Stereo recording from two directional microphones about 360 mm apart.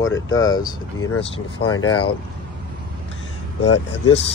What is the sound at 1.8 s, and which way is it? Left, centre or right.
Speech, centre.